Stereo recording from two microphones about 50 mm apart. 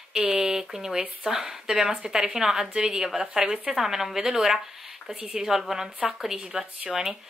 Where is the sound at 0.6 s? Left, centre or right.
Centre.